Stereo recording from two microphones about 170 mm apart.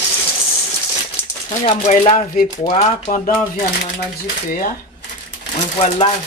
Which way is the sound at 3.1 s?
55° left (ahead or behind).